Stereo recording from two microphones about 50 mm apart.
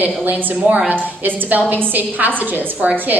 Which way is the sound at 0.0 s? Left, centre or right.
Right.